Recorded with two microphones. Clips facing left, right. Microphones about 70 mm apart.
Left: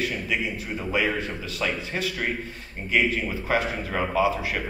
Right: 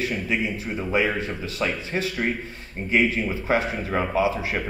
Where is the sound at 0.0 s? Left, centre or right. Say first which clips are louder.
Right 2 dB; right.